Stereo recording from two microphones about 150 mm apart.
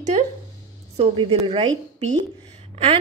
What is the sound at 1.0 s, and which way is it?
A woman's voice, 40° right (ahead or behind).